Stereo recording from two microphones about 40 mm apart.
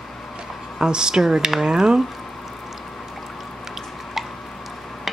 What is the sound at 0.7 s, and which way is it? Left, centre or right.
Speech, centre.